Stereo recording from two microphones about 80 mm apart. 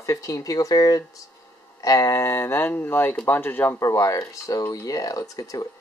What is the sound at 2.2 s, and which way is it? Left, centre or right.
Speech, left.